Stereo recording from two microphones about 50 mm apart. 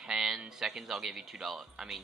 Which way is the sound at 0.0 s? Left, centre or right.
Centre.